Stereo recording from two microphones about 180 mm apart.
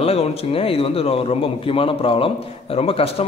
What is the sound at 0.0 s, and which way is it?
Speech, 35° left (ahead or behind).